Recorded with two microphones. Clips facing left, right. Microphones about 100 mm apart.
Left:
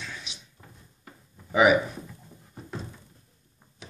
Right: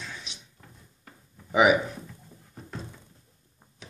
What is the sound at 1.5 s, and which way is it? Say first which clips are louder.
Speech: left 1 dB; 15° right (ahead or behind).